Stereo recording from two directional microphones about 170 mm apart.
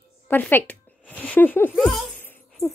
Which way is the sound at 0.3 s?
10° left (ahead or behind).